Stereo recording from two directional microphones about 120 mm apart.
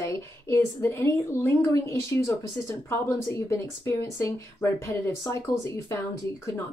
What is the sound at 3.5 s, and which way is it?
A woman's voice, 25° left (ahead or behind).